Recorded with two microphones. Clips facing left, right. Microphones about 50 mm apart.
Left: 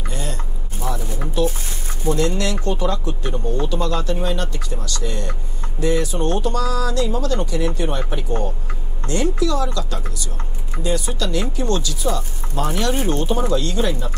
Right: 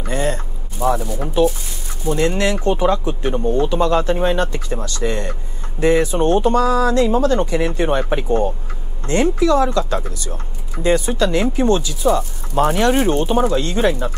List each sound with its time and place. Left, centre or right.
0.1 s a sound: right
1.4 s speech: right
9.0 s speech: right